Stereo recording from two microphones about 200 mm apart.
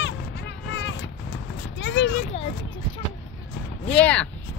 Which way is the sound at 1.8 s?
65° left (ahead or behind).